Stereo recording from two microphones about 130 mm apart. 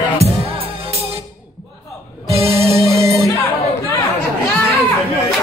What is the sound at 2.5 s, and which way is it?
Music, 20° right (ahead or behind).